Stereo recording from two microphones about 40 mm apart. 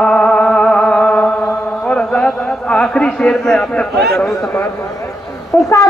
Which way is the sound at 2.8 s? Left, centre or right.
Left.